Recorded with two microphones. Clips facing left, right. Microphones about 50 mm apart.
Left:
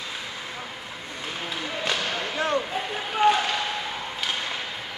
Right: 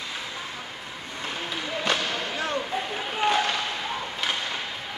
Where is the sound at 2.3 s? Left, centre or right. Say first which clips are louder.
Left 6 dB; left.